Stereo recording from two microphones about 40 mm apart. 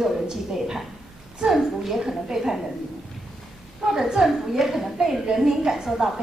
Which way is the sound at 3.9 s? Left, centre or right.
Centre.